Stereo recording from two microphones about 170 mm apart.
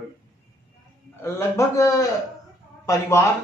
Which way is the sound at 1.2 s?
15° left (ahead or behind).